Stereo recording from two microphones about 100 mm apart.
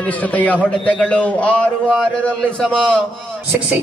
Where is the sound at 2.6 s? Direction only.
10° left (ahead or behind).